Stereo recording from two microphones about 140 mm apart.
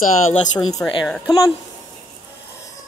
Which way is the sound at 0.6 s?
25° left (ahead or behind).